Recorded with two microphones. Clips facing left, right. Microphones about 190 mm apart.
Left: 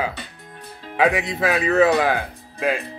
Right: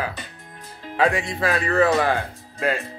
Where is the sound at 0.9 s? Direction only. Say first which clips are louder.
Left 2 dB; 5° left (ahead or behind).